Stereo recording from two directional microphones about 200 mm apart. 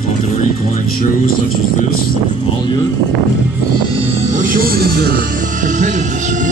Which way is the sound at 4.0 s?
40° right (ahead or behind).